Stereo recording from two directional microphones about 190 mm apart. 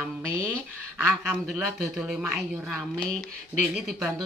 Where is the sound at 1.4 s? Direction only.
Centre (ahead or behind).